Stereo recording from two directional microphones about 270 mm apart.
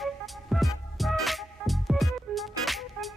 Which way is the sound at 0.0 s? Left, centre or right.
Centre.